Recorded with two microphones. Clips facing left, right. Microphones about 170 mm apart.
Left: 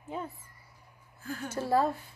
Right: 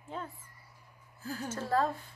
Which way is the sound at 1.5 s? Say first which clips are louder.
Left 3 dB; 10° left (ahead or behind).